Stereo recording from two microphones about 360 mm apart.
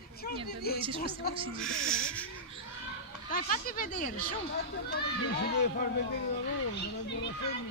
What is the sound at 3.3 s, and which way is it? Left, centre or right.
A child's voice, left.